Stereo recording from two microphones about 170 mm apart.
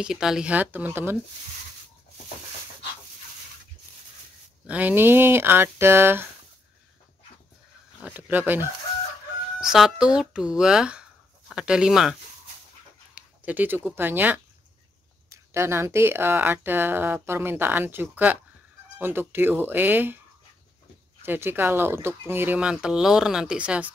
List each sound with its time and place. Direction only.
0.0 s speech: 5° right (ahead or behind)
4.6 s speech: 10° right (ahead or behind)
8.0 s speech: 10° right (ahead or behind)
21.2 s speech: 10° right (ahead or behind)